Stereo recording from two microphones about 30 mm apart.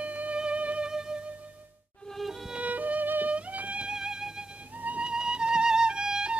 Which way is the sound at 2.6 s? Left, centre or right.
Right.